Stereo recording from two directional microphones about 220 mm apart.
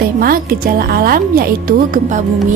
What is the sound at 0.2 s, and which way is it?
Speech, 40° right (ahead or behind).